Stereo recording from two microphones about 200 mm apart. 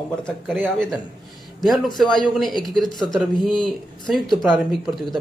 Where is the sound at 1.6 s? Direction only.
Centre (ahead or behind).